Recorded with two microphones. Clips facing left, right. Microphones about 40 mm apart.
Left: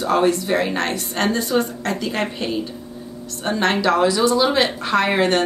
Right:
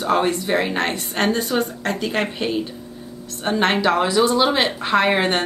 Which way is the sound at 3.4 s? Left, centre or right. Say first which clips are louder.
Even; right.